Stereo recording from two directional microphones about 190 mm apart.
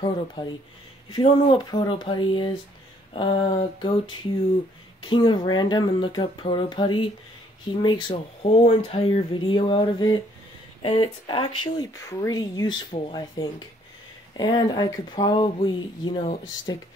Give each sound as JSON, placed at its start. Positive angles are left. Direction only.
{"t": 0.0, "sound": "speech", "side_deg": 25}
{"t": 5.0, "sound": "speech", "side_deg": 25}